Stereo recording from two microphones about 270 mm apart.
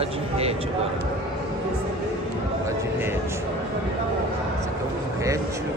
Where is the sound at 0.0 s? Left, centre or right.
Right.